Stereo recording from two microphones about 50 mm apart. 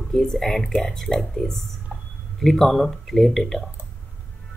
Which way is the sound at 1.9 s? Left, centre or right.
Right.